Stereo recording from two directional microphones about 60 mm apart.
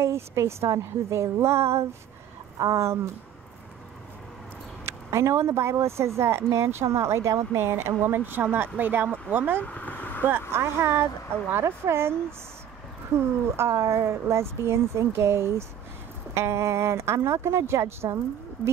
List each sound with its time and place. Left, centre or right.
0.0 s speech: right
4.8 s speech: right
9.6 s vehicle: left
10.5 s speech: right